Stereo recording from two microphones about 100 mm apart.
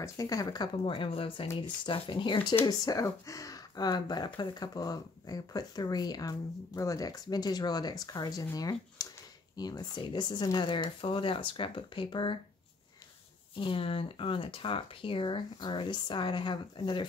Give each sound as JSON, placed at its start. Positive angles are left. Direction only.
{"t": 0.0, "sound": "speech", "side_deg": 35}
{"t": 0.8, "sound": "speech", "side_deg": 60}
{"t": 2.6, "sound": "speech", "side_deg": 35}
{"t": 13.6, "sound": "speech", "side_deg": 60}